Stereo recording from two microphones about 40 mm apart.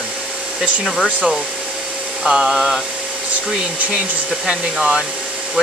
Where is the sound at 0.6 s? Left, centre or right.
Centre.